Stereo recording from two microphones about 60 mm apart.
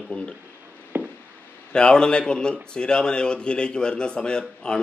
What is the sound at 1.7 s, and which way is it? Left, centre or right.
Speech, centre.